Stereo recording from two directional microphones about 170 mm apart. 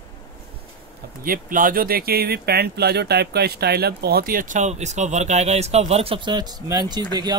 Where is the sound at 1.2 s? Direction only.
55° right (ahead or behind).